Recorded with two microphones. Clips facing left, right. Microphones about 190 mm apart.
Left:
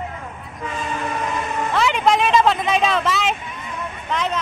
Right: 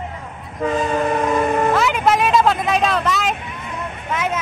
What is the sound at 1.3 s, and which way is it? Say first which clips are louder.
Vehicle: right 7 dB; 55° right (ahead or behind).